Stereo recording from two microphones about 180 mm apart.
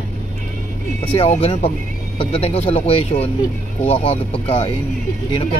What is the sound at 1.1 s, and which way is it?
Speech, 35° left (ahead or behind).